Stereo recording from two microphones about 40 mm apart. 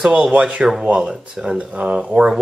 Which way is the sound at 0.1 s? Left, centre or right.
Right.